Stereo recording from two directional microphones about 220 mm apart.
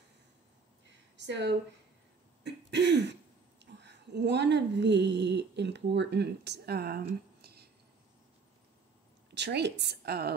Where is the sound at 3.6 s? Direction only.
50° right (ahead or behind).